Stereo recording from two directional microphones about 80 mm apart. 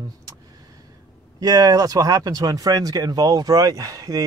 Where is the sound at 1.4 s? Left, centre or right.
Right.